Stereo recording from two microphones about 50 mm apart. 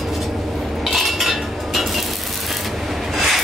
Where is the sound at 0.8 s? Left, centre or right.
Centre.